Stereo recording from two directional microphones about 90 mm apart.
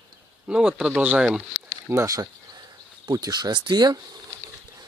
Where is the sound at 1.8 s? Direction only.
35° right (ahead or behind); by 4.0 s 55° right (ahead or behind).